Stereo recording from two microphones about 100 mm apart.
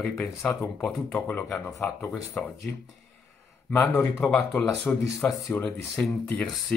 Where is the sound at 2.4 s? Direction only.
10° left (ahead or behind).